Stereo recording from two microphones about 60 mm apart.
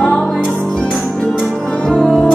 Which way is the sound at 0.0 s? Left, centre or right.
Centre.